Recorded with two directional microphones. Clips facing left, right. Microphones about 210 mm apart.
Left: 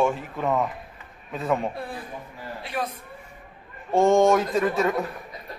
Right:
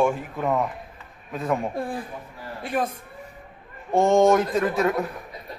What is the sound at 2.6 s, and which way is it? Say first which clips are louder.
Speech: right 5 dB; 50° right (ahead or behind).